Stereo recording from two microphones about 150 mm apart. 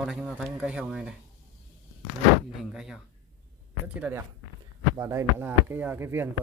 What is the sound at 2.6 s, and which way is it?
Speech, 5° right (ahead or behind).